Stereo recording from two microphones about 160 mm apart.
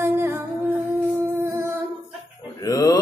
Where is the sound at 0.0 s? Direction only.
15° right (ahead or behind).